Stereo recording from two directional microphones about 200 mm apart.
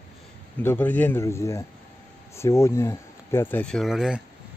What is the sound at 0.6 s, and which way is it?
Speech, 10° left (ahead or behind).